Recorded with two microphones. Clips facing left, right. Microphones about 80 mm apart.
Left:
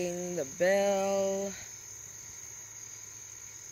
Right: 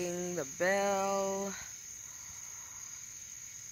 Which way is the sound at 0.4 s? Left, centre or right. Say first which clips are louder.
Left 5 dB; right.